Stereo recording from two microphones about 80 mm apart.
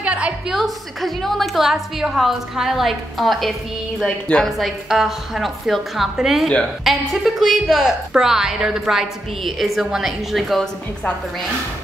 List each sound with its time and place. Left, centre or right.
0.0 s a sound: centre
0.6 s a woman's voice: centre
4.5 s speech: centre